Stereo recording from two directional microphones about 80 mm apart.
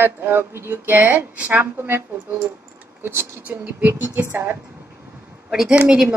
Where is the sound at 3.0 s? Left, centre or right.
Right.